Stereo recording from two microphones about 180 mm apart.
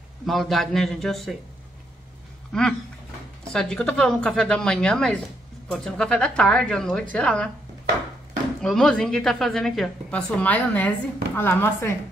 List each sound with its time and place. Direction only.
0.3 s a woman's voice: centre (ahead or behind)
2.5 s a woman's voice: 5° left (ahead or behind)
8.6 s a woman's voice: 5° left (ahead or behind)